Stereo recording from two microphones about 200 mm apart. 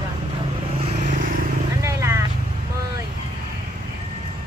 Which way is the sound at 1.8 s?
15° right (ahead or behind).